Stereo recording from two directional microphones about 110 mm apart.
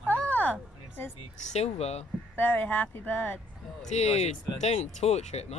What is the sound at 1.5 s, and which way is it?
Speech, 75° left (ahead or behind).